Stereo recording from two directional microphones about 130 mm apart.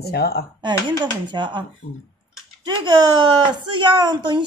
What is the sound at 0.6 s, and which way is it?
Speech, 35° right (ahead or behind).